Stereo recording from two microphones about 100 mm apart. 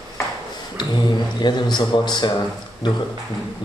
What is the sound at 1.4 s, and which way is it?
Speech, 45° left (ahead or behind).